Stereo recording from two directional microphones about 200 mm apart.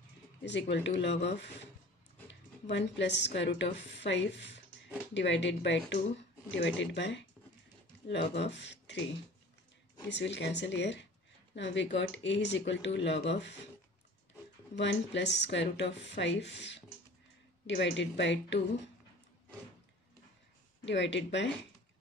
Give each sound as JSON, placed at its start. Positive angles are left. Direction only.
{"t": 0.5, "sound": "speech", "side_deg": 60}
{"t": 2.6, "sound": "speech", "side_deg": 60}
{"t": 10.0, "sound": "speech", "side_deg": 60}
{"t": 14.8, "sound": "speech", "side_deg": 60}
{"t": 20.8, "sound": "speech", "side_deg": 65}